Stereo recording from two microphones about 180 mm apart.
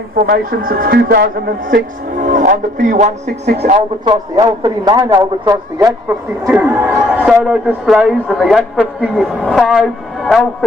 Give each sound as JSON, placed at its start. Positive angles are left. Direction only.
{"t": 0.3, "sound": "speech", "side_deg": -55}
{"t": 4.0, "sound": "a man's voice", "side_deg": -25}